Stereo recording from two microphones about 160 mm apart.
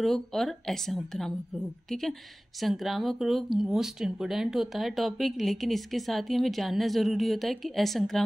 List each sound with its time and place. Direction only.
0.0 s speech: centre (ahead or behind)